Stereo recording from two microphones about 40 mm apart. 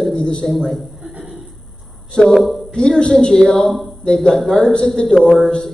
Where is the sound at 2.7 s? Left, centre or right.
Centre.